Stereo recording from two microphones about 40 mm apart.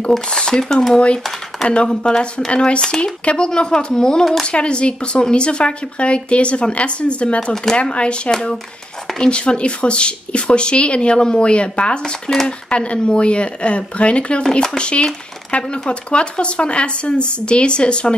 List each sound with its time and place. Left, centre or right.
0.3 s speech: centre
4.5 s speech: left
12.0 s speech: centre
12.4 s speech: left
14.4 s speech: centre
14.8 s speech: left